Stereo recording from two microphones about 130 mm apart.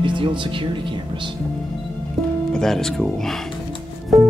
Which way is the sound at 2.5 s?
5° left (ahead or behind).